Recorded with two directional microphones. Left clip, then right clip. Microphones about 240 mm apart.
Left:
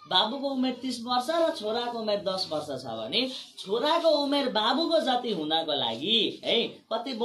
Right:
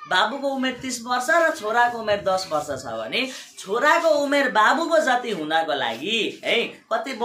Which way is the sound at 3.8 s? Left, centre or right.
Right.